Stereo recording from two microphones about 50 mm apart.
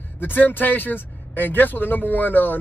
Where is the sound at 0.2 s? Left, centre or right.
Left.